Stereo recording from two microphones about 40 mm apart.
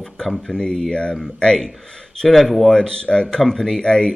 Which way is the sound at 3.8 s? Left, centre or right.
Left.